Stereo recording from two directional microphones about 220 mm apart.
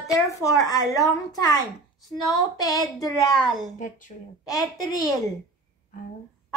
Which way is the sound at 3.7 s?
35° left (ahead or behind).